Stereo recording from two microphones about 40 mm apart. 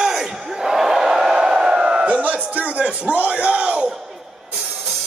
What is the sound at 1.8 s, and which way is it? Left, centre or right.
A man's voice, right.